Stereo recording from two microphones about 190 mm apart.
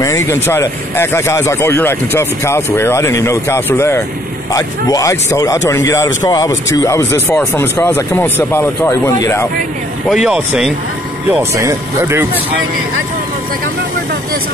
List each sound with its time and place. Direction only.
0.0 s speech: 15° left (ahead or behind)
10.0 s speech: centre (ahead or behind)